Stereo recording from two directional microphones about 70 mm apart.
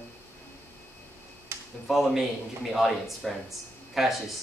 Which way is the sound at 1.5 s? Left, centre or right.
Right.